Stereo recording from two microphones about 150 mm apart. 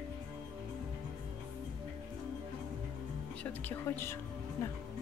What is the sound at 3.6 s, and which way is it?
Speech, 15° left (ahead or behind).